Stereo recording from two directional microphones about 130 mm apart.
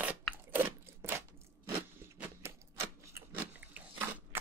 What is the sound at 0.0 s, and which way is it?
Crunch, 15° right (ahead or behind).